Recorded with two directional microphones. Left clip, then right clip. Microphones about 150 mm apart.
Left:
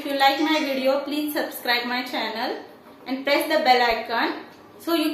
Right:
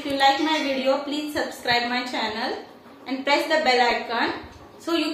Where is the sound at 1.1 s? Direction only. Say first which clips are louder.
Left 1 dB; 20° left (ahead or behind).